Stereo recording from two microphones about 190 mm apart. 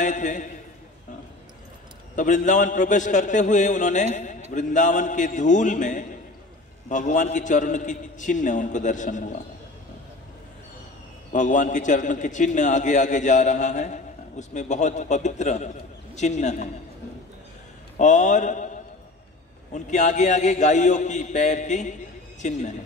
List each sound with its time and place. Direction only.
0.0 s a man's voice: 40° left (ahead or behind)
2.1 s a man's voice: 40° left (ahead or behind)
11.3 s a man's voice: 40° left (ahead or behind)
17.9 s a man's voice: 40° left (ahead or behind)
19.7 s a man's voice: 40° left (ahead or behind)